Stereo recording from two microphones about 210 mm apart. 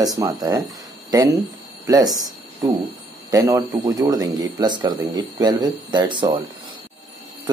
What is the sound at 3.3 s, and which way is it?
Speech, 15° right (ahead or behind).